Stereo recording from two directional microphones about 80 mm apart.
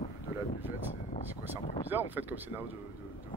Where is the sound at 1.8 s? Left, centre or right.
Right.